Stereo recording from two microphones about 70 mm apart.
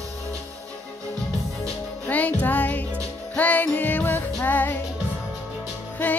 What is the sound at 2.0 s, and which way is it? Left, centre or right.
Music, left.